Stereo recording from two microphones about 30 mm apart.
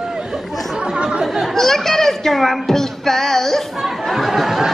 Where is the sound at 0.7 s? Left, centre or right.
Right.